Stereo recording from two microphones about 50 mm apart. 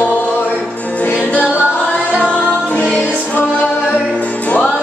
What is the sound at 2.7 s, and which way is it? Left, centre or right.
Music, left.